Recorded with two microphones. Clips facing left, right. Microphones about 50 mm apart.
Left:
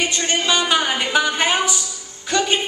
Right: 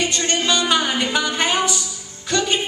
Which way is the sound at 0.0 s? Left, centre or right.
Centre.